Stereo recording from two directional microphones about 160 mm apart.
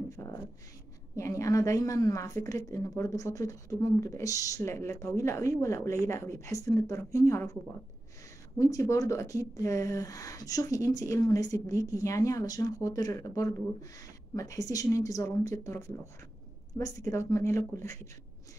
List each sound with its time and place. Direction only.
0.1 s a sound: 20° left (ahead or behind)
1.1 s speech: 20° left (ahead or behind)
8.5 s speech: 20° left (ahead or behind)